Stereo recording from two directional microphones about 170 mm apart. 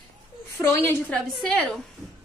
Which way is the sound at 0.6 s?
15° left (ahead or behind).